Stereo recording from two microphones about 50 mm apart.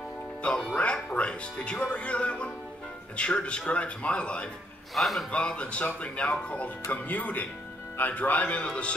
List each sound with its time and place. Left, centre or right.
0.4 s speech: left
4.9 s a man's voice: centre
5.3 s speech: left